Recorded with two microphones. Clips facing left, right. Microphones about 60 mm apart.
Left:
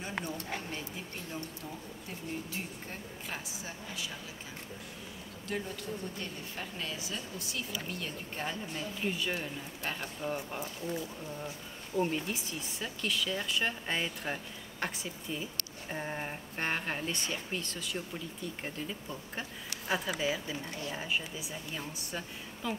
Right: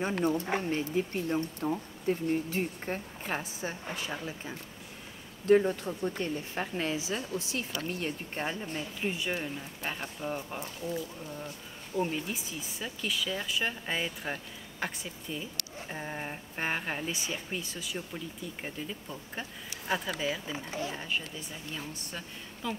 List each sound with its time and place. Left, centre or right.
0.5 s speech: right
5.7 s a woman's voice: right
6.9 s a woman's voice: right
8.7 s speech: centre